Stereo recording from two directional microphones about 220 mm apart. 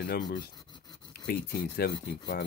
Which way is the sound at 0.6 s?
20° left (ahead or behind).